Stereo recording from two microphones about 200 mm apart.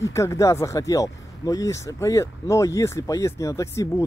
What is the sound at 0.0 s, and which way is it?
Speech, 15° left (ahead or behind).